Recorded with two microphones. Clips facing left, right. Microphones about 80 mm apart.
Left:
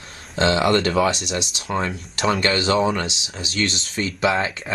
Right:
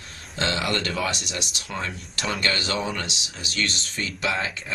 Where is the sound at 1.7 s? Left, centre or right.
Left.